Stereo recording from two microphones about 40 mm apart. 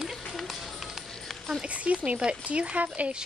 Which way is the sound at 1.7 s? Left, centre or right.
Right.